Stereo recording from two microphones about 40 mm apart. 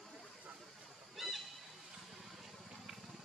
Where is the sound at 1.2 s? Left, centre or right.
Centre.